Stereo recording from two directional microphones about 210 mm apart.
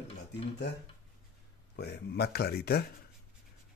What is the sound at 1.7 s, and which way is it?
Speech, 50° left (ahead or behind).